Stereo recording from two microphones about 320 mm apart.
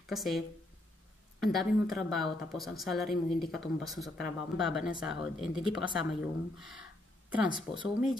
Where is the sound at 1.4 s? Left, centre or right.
Centre.